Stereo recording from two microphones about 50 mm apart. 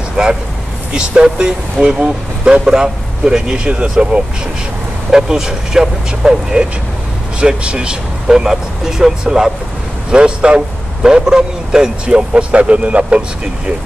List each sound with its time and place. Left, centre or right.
0.2 s a man's voice: centre